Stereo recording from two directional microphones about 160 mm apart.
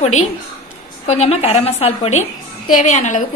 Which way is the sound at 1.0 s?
40° left (ahead or behind).